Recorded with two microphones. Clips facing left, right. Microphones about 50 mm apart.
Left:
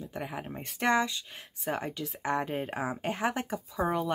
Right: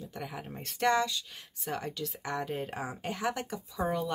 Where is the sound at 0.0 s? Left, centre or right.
Left.